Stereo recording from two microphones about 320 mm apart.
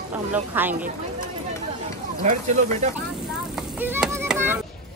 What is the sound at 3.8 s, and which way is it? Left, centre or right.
Music, centre.